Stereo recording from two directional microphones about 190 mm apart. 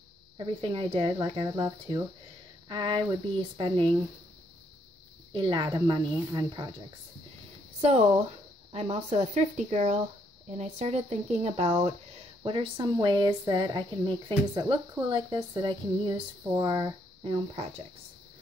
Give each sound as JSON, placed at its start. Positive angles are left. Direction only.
{"t": 0.6, "sound": "a woman's voice", "side_deg": -25}
{"t": 5.3, "sound": "a woman's voice", "side_deg": -25}
{"t": 8.7, "sound": "a woman's voice", "side_deg": -30}